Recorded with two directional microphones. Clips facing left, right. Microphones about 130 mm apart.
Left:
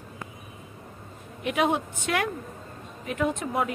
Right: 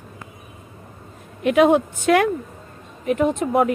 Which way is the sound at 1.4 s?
80° right.